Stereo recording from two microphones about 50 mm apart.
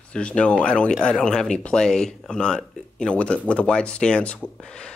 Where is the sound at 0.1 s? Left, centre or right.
Centre.